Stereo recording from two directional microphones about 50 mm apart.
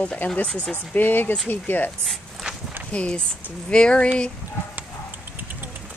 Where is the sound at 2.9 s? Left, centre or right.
Left.